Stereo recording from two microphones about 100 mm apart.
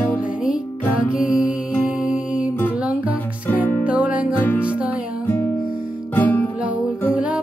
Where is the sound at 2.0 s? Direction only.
10° right (ahead or behind).